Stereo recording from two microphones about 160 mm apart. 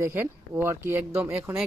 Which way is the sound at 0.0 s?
15° right (ahead or behind).